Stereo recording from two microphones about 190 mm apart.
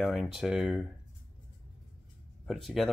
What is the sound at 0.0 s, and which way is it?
Speech, centre (ahead or behind).